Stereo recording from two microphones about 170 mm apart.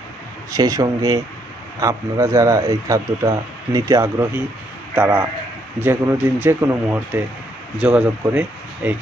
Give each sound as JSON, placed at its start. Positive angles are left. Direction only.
{"t": 0.5, "sound": "a man's voice", "side_deg": -20}